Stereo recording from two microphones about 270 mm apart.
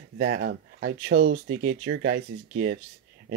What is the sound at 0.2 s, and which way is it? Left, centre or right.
Speech, right.